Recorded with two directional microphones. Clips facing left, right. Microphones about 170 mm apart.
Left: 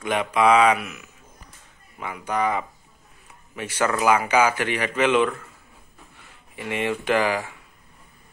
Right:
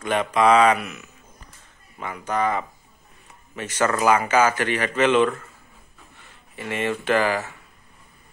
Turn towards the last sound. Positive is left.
turn(degrees=10)  # may be behind; listen again after turning